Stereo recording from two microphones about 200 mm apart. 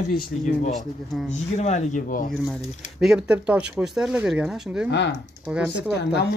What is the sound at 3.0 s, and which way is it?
Speech, 5° right (ahead or behind).